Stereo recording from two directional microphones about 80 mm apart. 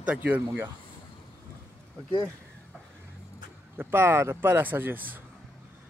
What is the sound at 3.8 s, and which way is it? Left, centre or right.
Speech, right.